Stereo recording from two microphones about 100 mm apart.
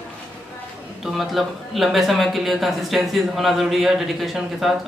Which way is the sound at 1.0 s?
Centre (ahead or behind).